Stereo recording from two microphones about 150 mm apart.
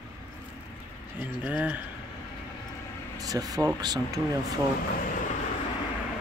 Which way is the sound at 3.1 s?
25° right (ahead or behind).